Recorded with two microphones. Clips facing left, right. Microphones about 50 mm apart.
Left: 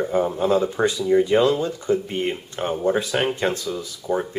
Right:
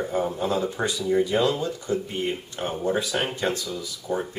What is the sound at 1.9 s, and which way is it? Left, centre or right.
Speech, left.